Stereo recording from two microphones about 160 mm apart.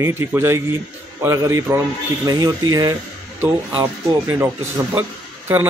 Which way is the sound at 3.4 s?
10° right (ahead or behind).